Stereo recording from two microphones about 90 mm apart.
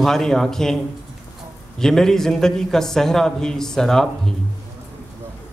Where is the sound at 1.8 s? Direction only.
5° left (ahead or behind).